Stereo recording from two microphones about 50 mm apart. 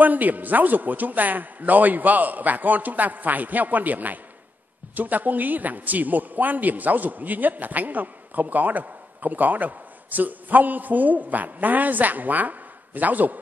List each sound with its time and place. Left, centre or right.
0.0 s a woman's voice: right